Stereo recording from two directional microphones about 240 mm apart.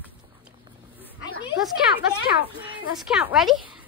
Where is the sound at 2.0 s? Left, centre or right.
Left.